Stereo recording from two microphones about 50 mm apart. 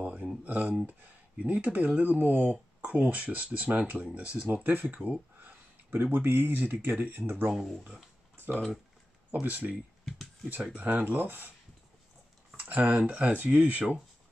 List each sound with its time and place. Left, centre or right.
0.0 s a sound: right
0.4 s speech: right
2.5 s speech: right
5.4 s a sound: right
6.1 s speech: right
7.5 s speech: centre
9.3 s speech: right
10.0 s a sound: centre
10.8 s speech: right
12.5 s speech: right